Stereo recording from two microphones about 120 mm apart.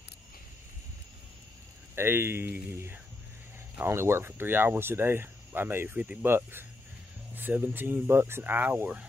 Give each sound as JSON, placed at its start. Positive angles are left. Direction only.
{"t": 2.0, "sound": "speech", "side_deg": -20}